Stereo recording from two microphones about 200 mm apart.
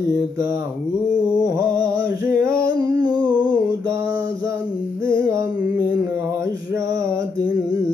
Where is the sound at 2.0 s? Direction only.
10° right (ahead or behind).